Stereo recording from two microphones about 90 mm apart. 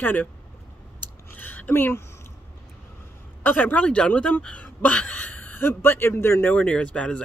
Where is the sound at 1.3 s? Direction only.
20° left (ahead or behind).